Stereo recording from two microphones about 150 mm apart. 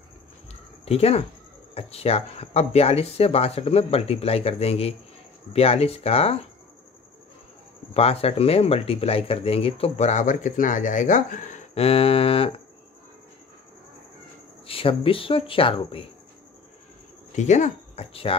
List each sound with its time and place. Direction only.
0.8 s speech: 40° left (ahead or behind)
7.9 s speech: 40° left (ahead or behind)
14.7 s speech: 40° left (ahead or behind)
17.4 s speech: 50° left (ahead or behind)